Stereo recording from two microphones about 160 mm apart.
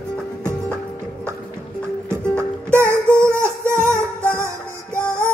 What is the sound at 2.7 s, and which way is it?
Music, 15° right (ahead or behind).